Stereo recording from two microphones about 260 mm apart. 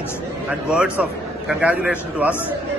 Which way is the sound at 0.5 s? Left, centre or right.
Centre.